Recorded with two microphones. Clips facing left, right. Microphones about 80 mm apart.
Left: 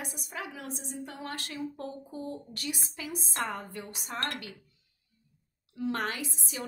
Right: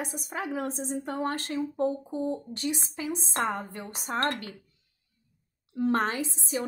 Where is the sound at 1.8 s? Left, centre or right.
Right.